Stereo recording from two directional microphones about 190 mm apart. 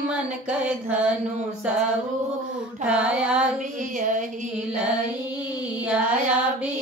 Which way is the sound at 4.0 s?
45° right (ahead or behind).